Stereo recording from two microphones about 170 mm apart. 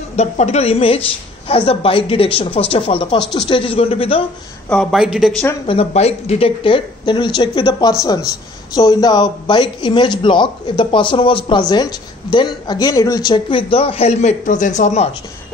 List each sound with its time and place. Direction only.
0.1 s speech: 40° left (ahead or behind)
4.6 s speech: centre (ahead or behind)
5.7 s speech: 35° left (ahead or behind)